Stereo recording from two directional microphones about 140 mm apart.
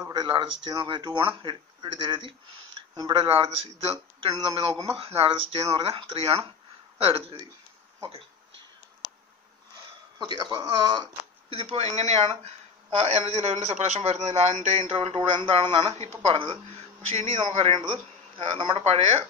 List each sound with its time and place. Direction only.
0.1 s speech: 30° right (ahead or behind)
2.9 s a sound: 30° right (ahead or behind)
3.2 s speech: 45° right (ahead or behind)
10.1 s speech: 30° right (ahead or behind)
11.5 s speech: 45° right (ahead or behind)
17.1 s speech: 55° right (ahead or behind)
17.7 s speech: 40° right (ahead or behind)